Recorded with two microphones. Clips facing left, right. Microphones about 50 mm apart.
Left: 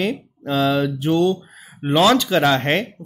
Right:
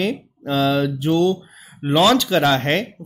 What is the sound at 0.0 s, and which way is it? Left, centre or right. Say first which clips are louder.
Speech: even; centre.